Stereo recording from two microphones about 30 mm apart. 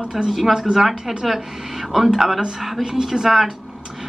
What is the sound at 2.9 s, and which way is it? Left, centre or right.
Speech, right.